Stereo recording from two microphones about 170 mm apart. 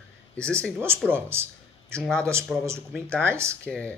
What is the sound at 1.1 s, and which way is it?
Speech, 15° right (ahead or behind).